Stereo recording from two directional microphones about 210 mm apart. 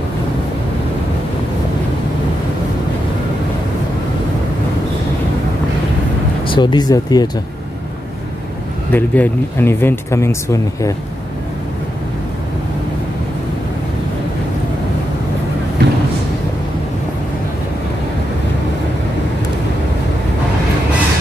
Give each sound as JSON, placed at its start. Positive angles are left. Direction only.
{"t": 6.4, "sound": "speech", "side_deg": 20}
{"t": 8.9, "sound": "speech", "side_deg": 10}
{"t": 15.8, "sound": "a sound", "side_deg": -55}